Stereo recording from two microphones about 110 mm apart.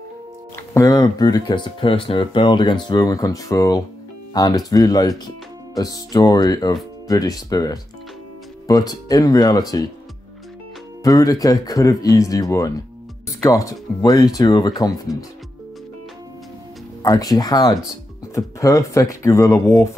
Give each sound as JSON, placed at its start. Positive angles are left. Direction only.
{"t": 0.7, "sound": "speech", "side_deg": 30}
{"t": 11.1, "sound": "speech", "side_deg": 35}
{"t": 17.0, "sound": "speech", "side_deg": 35}